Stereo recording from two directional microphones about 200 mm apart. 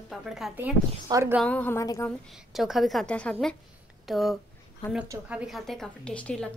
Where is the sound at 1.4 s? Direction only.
5° left (ahead or behind).